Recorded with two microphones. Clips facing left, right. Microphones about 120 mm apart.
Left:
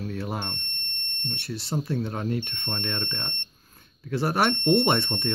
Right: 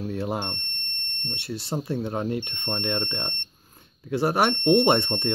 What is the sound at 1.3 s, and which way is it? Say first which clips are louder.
Speech: right 1 dB; 15° right (ahead or behind).